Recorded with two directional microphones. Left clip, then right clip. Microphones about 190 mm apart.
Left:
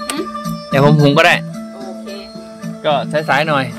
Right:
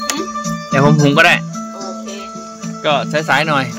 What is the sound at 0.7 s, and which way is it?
Speech, 15° left (ahead or behind).